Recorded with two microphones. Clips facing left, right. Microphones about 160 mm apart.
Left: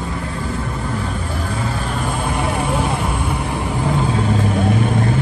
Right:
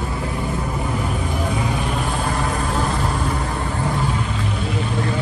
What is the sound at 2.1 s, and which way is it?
Vehicle, centre (ahead or behind).